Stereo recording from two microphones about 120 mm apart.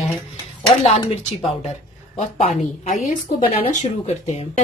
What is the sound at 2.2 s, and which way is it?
Speech, 90° left.